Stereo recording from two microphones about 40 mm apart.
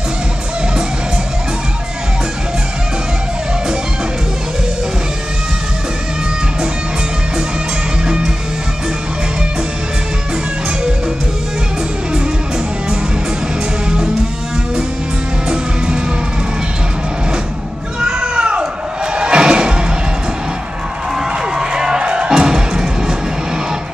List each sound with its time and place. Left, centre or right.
8.0 s music: centre
13.8 s music: centre
15.4 s music: right
18.2 s a sound: right
19.1 s music: right
21.5 s music: centre